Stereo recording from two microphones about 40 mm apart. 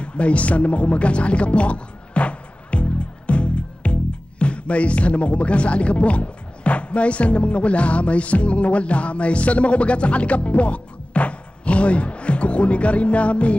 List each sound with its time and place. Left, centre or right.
0.0 s speech: left